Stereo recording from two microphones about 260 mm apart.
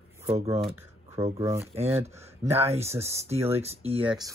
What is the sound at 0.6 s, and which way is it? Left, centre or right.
Speech, centre.